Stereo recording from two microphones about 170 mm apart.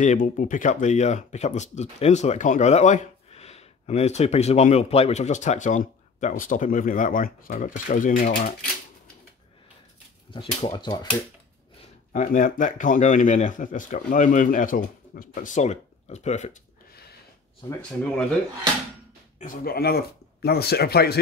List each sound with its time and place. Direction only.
0.0 s speech: 50° left (ahead or behind)
10.3 s speech: 30° left (ahead or behind)
12.1 s speech: 50° left (ahead or behind)
19.4 s speech: 55° left (ahead or behind)